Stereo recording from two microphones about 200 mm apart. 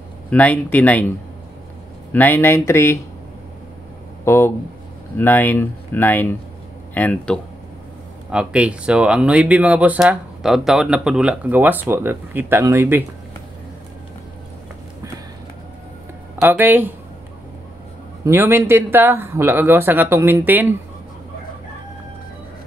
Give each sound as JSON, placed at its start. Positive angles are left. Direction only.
{"t": 0.3, "sound": "speech", "side_deg": 5}
{"t": 2.1, "sound": "speech", "side_deg": 10}
{"t": 4.2, "sound": "speech", "side_deg": 10}
{"t": 8.3, "sound": "speech", "side_deg": -5}
{"t": 16.3, "sound": "speech", "side_deg": -10}
{"t": 18.2, "sound": "speech", "side_deg": -10}